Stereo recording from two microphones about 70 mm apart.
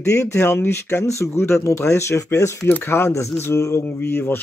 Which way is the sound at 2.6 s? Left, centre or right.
Left.